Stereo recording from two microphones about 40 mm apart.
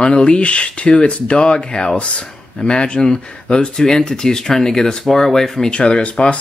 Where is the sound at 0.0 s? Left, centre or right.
Left.